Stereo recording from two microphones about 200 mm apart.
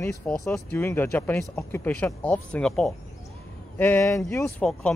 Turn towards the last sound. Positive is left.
turn(degrees=10)  # may be behind; listen again after turning